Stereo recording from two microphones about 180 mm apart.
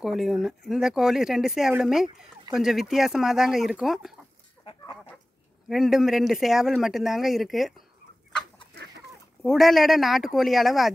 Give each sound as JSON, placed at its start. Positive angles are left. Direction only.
{"t": 0.0, "sound": "speech", "side_deg": 0}
{"t": 4.6, "sound": "chicken", "side_deg": 30}
{"t": 5.7, "sound": "speech", "side_deg": 0}
{"t": 9.4, "sound": "speech", "side_deg": 0}